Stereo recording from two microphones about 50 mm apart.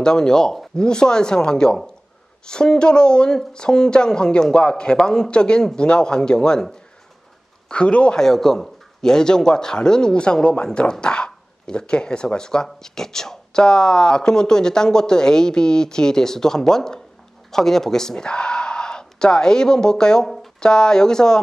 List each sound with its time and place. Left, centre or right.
0.0 s a man's voice: centre